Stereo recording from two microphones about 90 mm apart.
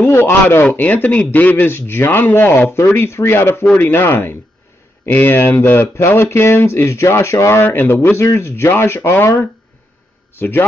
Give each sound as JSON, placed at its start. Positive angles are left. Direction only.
{"t": 0.0, "sound": "a man's voice", "side_deg": 20}